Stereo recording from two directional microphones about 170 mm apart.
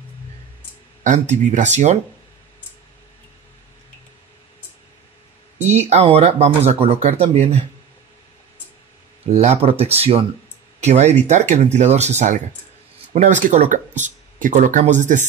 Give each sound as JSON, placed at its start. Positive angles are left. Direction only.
{"t": 1.0, "sound": "speech", "side_deg": -45}
{"t": 5.6, "sound": "speech", "side_deg": -40}
{"t": 9.3, "sound": "speech", "side_deg": -40}